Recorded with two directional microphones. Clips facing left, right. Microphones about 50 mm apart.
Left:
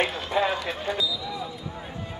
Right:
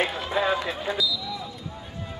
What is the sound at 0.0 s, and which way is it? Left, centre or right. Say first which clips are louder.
Run: even; centre.